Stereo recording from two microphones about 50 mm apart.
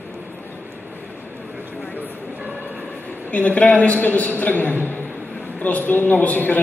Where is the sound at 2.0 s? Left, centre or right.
Right.